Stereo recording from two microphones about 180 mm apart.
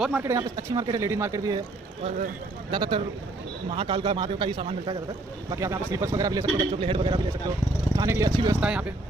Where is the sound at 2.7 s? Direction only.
25° right (ahead or behind).